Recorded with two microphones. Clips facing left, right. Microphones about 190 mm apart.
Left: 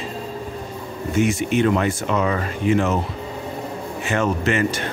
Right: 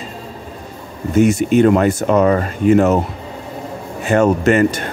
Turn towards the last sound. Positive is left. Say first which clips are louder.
# right 7 dB
turn(degrees=-45)  # may be behind; listen again after turning